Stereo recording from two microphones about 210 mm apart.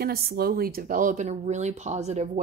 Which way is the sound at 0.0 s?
45° right (ahead or behind).